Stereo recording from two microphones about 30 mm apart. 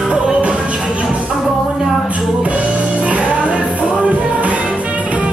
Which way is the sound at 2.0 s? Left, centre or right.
Right.